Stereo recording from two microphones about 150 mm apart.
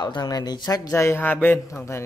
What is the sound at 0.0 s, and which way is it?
A man's voice, 30° left (ahead or behind).